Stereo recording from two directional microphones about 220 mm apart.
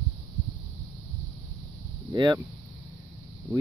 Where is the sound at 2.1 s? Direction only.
20° right (ahead or behind).